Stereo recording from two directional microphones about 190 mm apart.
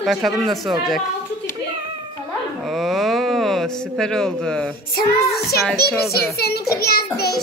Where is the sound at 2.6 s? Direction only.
Centre (ahead or behind).